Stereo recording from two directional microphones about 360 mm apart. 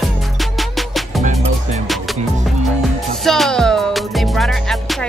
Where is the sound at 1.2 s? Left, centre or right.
Centre.